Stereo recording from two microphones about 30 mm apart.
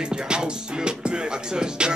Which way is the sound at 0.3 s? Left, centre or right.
Right.